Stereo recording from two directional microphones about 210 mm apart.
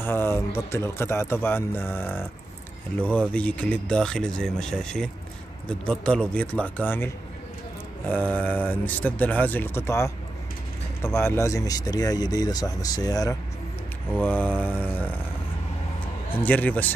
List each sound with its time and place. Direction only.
0.0 s speech: 10° left (ahead or behind)
8.1 s speech: 5° left (ahead or behind)
16.4 s speech: 5° left (ahead or behind)